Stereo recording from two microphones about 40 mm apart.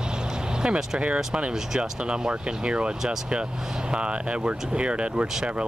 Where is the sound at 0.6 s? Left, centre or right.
Right.